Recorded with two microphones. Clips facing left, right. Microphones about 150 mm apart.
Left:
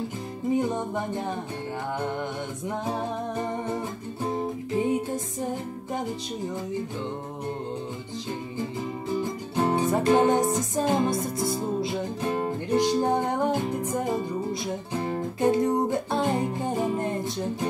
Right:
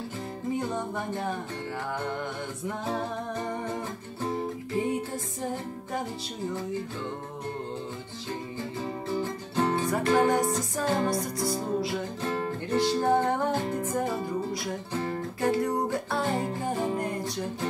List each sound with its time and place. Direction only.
0.6 s music: 20° left (ahead or behind)
4.7 s music: 20° left (ahead or behind)
9.2 s music: 15° left (ahead or behind)